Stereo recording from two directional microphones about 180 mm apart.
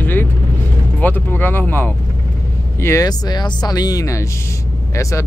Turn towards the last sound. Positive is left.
turn(degrees=15)  # may be behind; listen again after turning